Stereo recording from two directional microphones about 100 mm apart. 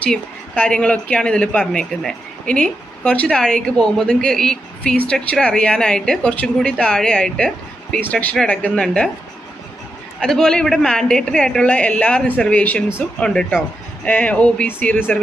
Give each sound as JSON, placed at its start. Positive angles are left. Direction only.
{"t": 0.0, "sound": "speech", "side_deg": 10}
{"t": 10.2, "sound": "speech", "side_deg": 5}